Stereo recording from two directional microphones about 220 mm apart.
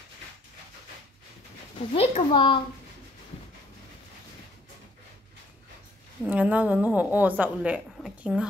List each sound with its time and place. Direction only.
2.0 s speech: 25° left (ahead or behind)
6.2 s a woman's voice: 5° right (ahead or behind)